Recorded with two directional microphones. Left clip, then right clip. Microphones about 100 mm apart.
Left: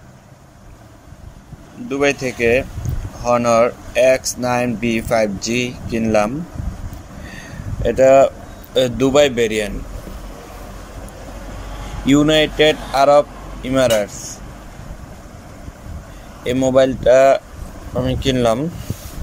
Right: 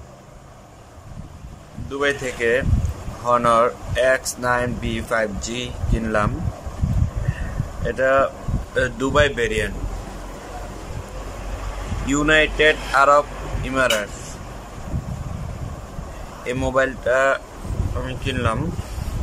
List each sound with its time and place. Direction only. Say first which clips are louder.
1.9 s speech: left 4 dB; 25° left (ahead or behind)
7.8 s speech: left 7 dB; 35° left (ahead or behind)
12.1 s speech: left 3 dB; 30° left (ahead or behind)
16.7 s speech: left 7 dB; 30° left (ahead or behind)
18.0 s speech: left 8 dB; 55° left (ahead or behind)